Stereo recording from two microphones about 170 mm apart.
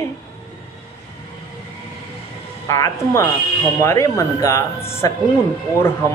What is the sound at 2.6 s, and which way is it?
Speech, 15° left (ahead or behind).